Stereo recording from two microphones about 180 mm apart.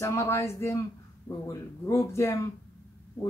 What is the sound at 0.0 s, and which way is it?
Speech, 15° left (ahead or behind).